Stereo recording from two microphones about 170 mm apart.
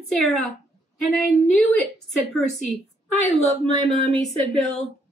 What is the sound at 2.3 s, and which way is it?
Speech, 5° left (ahead or behind).